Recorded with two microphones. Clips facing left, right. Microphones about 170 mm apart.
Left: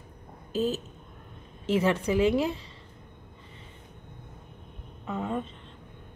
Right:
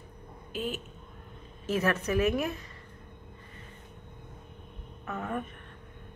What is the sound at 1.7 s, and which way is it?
Speech, 25° left (ahead or behind).